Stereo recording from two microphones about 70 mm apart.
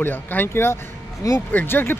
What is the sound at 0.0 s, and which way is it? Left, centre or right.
Speech, left.